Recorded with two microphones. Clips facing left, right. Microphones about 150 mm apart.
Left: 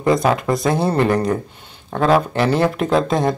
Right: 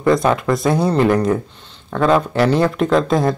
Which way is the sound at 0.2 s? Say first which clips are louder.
Right 1 dB; 20° left (ahead or behind).